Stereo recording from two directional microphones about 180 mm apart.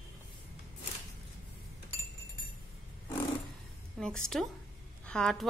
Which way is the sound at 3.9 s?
5° left (ahead or behind).